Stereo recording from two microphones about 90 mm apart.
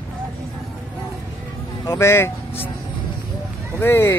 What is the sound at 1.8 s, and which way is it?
Speech, 30° left (ahead or behind).